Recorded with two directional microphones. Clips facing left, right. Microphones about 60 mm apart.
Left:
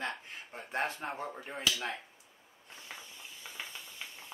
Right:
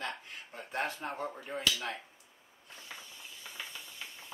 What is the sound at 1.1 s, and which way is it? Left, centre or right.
Speech, centre.